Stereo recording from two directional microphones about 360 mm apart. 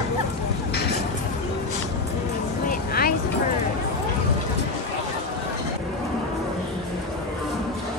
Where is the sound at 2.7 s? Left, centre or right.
Left.